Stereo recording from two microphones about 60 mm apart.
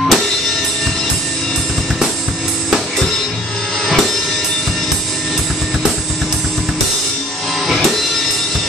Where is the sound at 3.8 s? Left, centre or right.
Centre.